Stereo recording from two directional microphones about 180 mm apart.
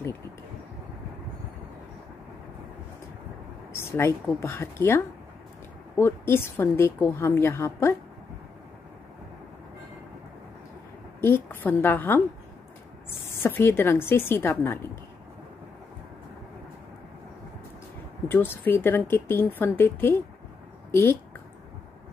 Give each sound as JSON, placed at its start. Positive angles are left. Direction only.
{"t": 3.7, "sound": "a woman's voice", "side_deg": 15}
{"t": 11.1, "sound": "a woman's voice", "side_deg": 15}
{"t": 13.3, "sound": "a woman's voice", "side_deg": 10}
{"t": 18.3, "sound": "a woman's voice", "side_deg": 10}